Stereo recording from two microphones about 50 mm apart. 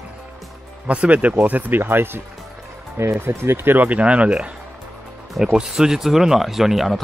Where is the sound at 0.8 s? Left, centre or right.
Right.